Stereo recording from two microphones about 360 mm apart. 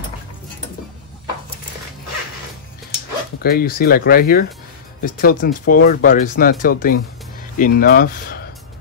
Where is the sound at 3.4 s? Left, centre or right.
Left.